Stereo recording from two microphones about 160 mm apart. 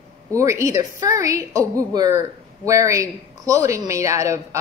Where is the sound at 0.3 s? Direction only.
20° right (ahead or behind).